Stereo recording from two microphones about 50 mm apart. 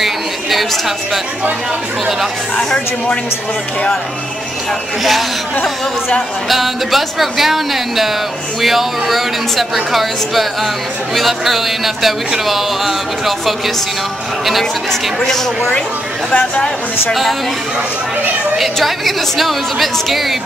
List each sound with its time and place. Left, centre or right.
0.0 s chatter: centre
2.5 s speech: centre
6.5 s a woman's voice: centre
16.3 s speech: left
17.1 s a woman's voice: centre
18.6 s a woman's voice: centre